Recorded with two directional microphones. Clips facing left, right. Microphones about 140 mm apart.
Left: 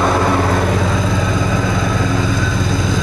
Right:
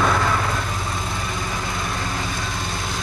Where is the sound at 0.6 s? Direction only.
90° left.